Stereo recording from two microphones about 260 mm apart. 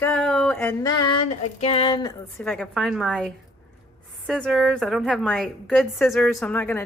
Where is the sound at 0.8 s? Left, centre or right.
Centre.